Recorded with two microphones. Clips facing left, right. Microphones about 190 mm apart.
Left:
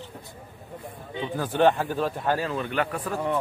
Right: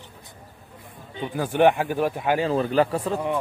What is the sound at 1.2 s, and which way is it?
Speech, 15° right (ahead or behind).